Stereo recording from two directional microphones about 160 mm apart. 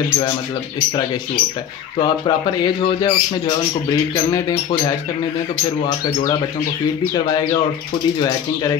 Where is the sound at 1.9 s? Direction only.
30° left (ahead or behind).